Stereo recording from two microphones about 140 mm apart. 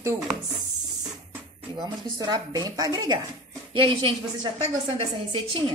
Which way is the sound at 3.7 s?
40° right (ahead or behind).